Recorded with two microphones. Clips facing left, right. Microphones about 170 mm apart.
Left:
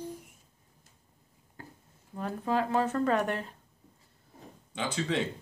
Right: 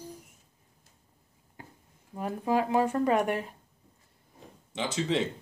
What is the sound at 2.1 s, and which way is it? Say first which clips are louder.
Speech: right 2 dB; 10° right (ahead or behind).